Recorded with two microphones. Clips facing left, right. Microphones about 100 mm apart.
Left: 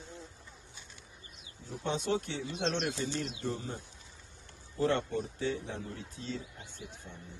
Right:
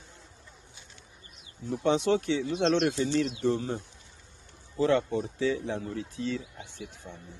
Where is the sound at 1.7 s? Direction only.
90° right.